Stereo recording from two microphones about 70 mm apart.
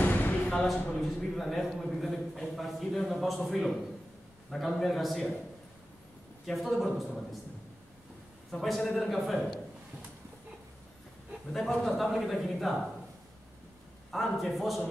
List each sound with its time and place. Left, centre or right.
0.0 s a sound: left
0.7 s a man's voice: centre
6.4 s a man's voice: centre
8.5 s a man's voice: centre
11.5 s a man's voice: centre
14.1 s a man's voice: centre